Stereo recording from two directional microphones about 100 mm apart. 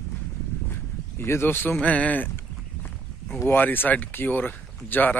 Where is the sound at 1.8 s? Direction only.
15° left (ahead or behind).